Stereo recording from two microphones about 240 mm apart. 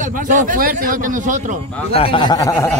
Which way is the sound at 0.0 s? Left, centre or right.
Right.